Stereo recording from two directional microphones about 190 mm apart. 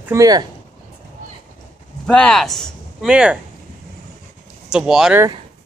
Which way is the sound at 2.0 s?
5° left (ahead or behind).